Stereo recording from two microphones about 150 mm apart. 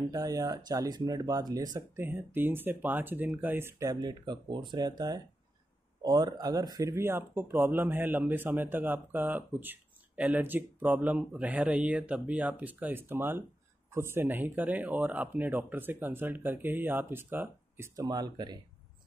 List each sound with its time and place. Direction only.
0.1 s speech: 25° right (ahead or behind)
2.0 s speech: 15° right (ahead or behind)